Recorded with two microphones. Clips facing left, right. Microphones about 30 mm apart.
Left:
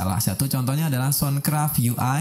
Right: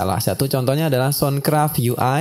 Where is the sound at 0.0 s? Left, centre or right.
Right.